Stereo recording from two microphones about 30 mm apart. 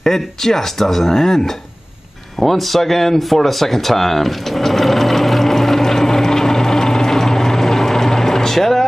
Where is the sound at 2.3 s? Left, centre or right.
Centre.